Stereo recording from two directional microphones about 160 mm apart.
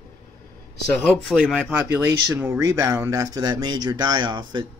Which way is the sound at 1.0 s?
Centre (ahead or behind).